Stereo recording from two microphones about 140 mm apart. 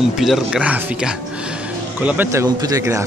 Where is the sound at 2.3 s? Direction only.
25° right (ahead or behind).